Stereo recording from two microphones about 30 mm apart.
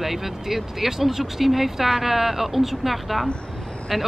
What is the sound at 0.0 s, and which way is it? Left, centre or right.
Speech, centre.